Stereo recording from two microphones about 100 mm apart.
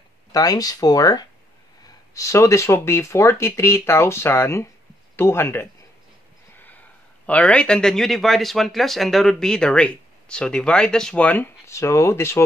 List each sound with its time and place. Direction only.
0.3 s speech: 40° left (ahead or behind)
7.2 s a man's voice: 15° left (ahead or behind)